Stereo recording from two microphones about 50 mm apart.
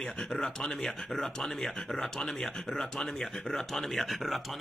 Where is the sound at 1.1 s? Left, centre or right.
Centre.